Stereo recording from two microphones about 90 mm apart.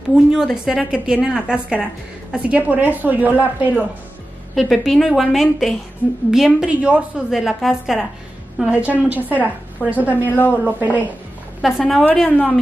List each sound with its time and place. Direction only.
0.3 s speech: 5° right (ahead or behind)
4.6 s a woman's voice: centre (ahead or behind)
7.2 s a woman's voice: 5° right (ahead or behind)
8.5 s speech: 15° right (ahead or behind)
10.2 s a woman's voice: 20° left (ahead or behind)
10.6 s a woman's voice: 20° right (ahead or behind)
11.6 s a woman's voice: centre (ahead or behind)
12.2 s a woman's voice: 15° left (ahead or behind)